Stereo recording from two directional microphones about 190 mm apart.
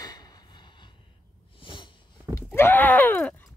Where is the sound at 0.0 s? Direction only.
20° left (ahead or behind).